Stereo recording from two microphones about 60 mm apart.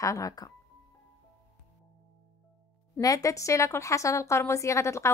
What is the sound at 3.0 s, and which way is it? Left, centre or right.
A woman's voice, left.